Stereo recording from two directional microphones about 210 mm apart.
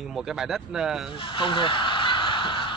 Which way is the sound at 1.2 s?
25° left (ahead or behind).